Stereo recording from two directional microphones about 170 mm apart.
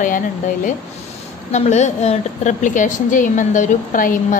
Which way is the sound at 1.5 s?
40° left (ahead or behind).